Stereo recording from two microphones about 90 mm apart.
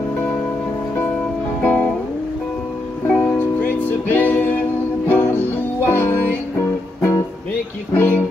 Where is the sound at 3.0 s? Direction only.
20° left (ahead or behind).